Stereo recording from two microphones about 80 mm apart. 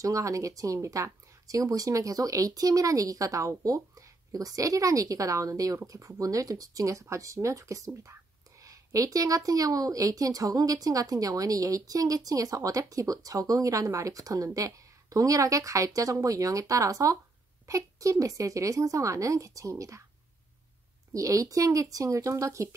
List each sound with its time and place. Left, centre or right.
0.0 s a woman's voice: right
21.1 s a woman's voice: right